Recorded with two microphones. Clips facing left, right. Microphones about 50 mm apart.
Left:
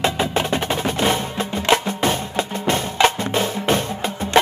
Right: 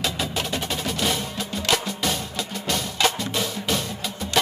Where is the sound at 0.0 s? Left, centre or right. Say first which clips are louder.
Left 7 dB; left.